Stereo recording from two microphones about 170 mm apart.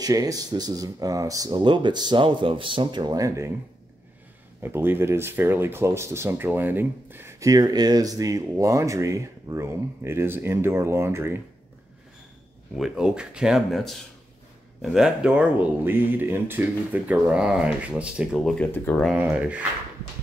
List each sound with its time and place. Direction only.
0.0 s speech: 20° right (ahead or behind)
4.6 s speech: 10° right (ahead or behind)
12.7 s speech: 5° right (ahead or behind)
19.1 s speech: 10° right (ahead or behind)